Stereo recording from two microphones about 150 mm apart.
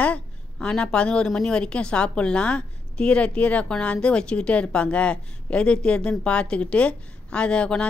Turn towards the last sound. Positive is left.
turn(degrees=5)  # may be behind; listen again after turning